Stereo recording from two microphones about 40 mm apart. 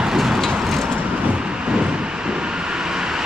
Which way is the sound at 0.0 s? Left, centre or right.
Centre.